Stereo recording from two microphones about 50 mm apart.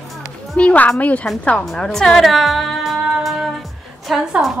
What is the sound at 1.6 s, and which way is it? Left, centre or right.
Speech, centre.